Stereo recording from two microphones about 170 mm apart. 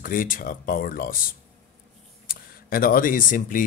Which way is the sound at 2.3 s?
55° left (ahead or behind).